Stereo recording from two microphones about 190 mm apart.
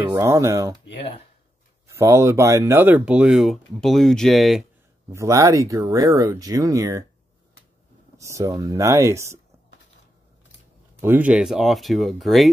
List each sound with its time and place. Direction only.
0.1 s speech: 15° right (ahead or behind)
1.9 s speech: 15° right (ahead or behind); by 4.6 s centre (ahead or behind)
5.1 s speech: 15° right (ahead or behind)
8.2 s speech: 15° right (ahead or behind)
11.0 s speech: 10° right (ahead or behind)